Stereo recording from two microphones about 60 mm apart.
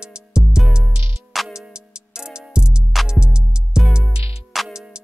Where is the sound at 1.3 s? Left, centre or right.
Centre.